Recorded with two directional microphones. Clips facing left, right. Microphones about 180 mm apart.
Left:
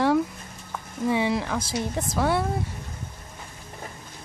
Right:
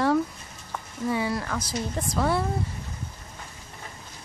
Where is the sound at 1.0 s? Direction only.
15° left (ahead or behind).